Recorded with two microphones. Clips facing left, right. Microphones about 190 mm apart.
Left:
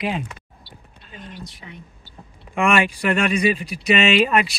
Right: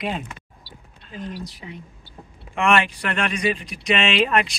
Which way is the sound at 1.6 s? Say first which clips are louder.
Right 3 dB; 20° right (ahead or behind).